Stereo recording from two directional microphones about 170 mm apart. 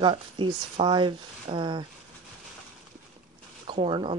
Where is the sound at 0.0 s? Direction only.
30° right (ahead or behind).